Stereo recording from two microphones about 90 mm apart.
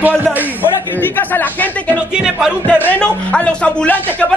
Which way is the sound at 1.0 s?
20° left (ahead or behind).